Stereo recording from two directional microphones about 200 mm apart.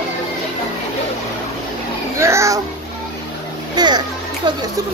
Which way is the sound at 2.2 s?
15° right (ahead or behind).